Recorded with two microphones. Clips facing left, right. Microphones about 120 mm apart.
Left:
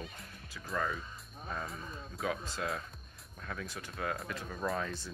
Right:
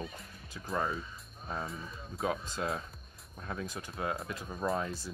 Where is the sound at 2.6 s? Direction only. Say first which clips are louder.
Right 2 dB; 30° right (ahead or behind).